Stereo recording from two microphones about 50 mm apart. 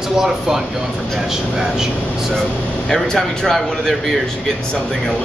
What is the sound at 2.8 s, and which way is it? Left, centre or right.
Speech, centre.